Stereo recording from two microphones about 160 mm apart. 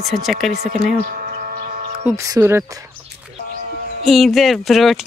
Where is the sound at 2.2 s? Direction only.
20° right (ahead or behind).